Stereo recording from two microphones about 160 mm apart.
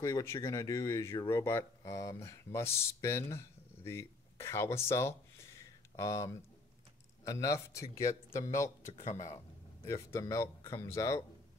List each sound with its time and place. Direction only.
0.0 s speech: 20° left (ahead or behind)
5.6 s a sound: 20° left (ahead or behind)
7.2 s speech: 20° left (ahead or behind)
8.8 s speech: 45° left (ahead or behind)
9.1 s speech: 20° left (ahead or behind)